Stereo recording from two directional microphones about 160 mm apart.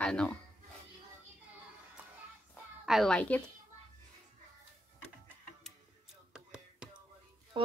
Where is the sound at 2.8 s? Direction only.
Centre (ahead or behind).